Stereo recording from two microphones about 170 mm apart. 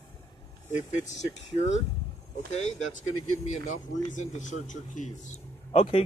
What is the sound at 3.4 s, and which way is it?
A man's voice, 45° left (ahead or behind).